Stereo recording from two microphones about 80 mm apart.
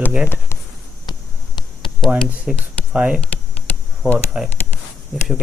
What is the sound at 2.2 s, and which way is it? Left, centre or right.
Speech, centre.